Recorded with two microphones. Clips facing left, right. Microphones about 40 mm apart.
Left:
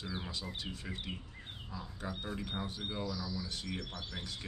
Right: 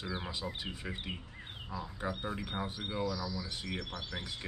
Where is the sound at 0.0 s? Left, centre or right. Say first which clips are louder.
Right 3 dB; centre.